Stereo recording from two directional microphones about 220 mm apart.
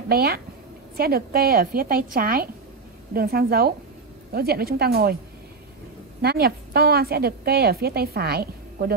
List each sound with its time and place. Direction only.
0.1 s a woman's voice: 45° right (ahead or behind)
6.2 s a woman's voice: 45° right (ahead or behind)